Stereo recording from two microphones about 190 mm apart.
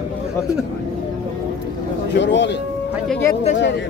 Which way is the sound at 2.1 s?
70° left (ahead or behind).